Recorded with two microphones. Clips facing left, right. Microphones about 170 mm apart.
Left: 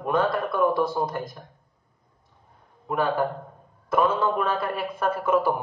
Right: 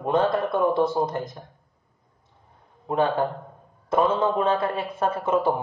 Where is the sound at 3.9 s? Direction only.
25° right (ahead or behind).